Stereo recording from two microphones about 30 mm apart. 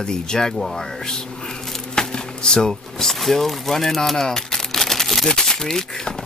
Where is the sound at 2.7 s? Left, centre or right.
Centre.